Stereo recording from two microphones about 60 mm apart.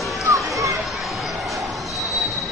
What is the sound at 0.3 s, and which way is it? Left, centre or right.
Children playing, right.